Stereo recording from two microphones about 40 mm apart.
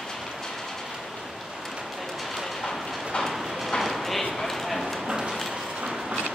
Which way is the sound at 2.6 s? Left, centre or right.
Centre.